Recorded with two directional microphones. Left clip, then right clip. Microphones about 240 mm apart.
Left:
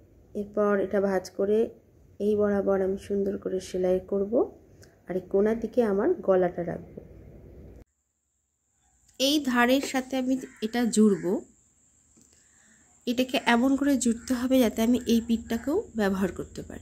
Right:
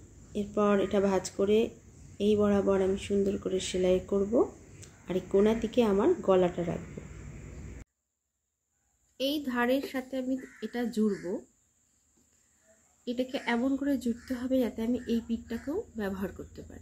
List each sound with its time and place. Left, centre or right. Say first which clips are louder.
0.3 s speech: left 2 dB; centre
9.1 s speech: left 7 dB; left
13.0 s speech: left 7 dB; left